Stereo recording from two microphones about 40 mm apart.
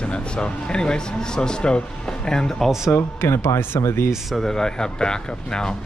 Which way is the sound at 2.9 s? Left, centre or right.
Left.